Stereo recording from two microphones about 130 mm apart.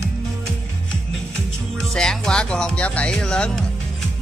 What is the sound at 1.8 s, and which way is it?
Music, 5° left (ahead or behind).